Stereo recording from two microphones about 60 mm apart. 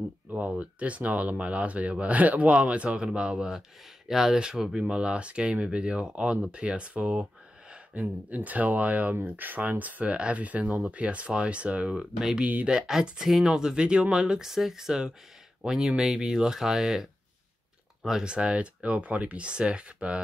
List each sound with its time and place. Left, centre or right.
0.3 s speech: right
12.0 s speech: centre
12.4 s speech: right
12.6 s speech: centre